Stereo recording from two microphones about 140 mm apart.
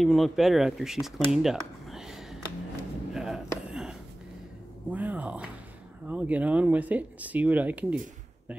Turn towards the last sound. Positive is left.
turn(degrees=-10)  # may be behind; listen again after turning